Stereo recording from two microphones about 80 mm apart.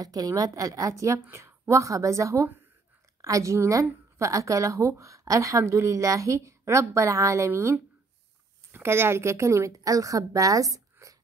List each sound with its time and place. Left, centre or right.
0.0 s a woman's voice: right
8.7 s a woman's voice: right